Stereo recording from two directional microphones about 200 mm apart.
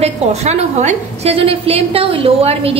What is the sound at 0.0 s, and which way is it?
A woman's voice, 35° right (ahead or behind).